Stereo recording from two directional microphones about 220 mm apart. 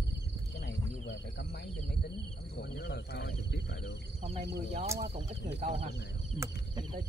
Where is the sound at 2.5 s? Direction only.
50° left (ahead or behind).